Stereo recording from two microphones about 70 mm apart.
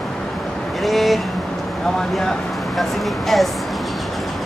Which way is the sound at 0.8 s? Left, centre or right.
Centre.